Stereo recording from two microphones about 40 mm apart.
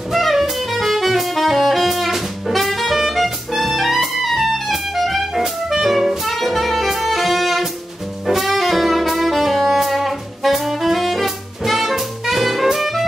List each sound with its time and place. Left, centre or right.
0.1 s saxophone: centre